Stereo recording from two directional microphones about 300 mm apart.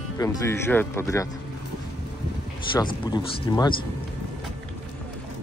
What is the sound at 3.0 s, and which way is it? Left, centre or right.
Speech, centre.